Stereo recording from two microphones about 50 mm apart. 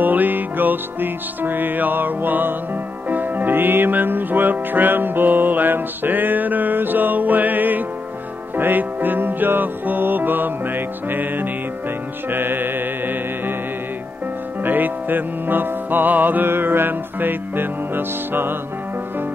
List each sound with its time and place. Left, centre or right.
0.0 s music: right
14.6 s music: right